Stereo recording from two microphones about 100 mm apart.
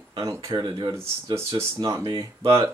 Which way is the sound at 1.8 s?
45° right (ahead or behind).